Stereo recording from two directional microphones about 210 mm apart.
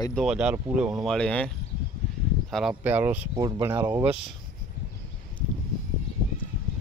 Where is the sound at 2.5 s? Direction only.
5° right (ahead or behind).